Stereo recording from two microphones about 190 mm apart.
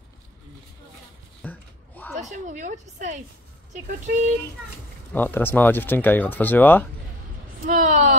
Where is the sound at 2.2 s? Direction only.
40° right (ahead or behind).